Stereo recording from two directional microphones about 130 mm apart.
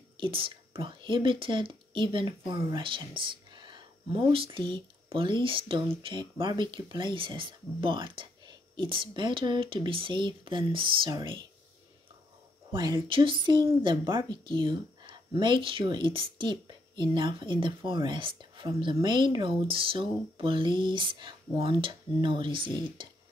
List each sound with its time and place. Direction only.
0.2 s speech: 40° right (ahead or behind)
12.7 s speech: 35° right (ahead or behind)